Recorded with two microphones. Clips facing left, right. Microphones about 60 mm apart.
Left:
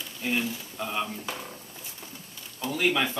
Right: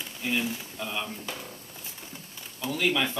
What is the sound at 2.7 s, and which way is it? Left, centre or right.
Speech, centre.